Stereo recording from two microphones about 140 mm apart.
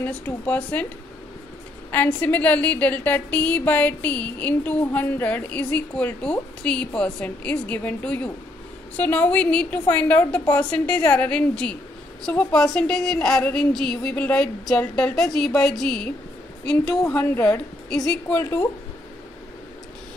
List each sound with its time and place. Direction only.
0.0 s a woman's voice: 10° left (ahead or behind)
1.9 s a woman's voice: 10° left (ahead or behind)